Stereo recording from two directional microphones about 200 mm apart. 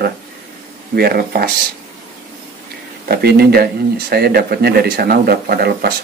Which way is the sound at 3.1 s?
55° right (ahead or behind).